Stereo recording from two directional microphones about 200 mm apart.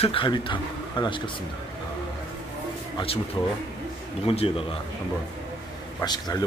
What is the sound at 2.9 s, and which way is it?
Speech, 30° left (ahead or behind).